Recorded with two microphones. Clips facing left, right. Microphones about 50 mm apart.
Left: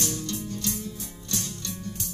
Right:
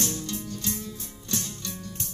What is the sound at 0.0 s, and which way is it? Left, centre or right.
Music, right.